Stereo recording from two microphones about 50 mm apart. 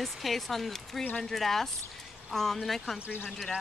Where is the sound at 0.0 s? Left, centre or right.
Centre.